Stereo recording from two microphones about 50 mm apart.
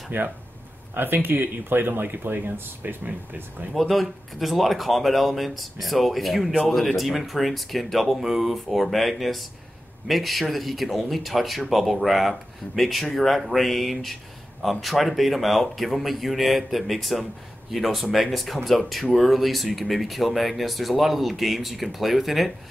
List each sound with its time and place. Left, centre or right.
0.1 s speech: right
3.7 s speech: centre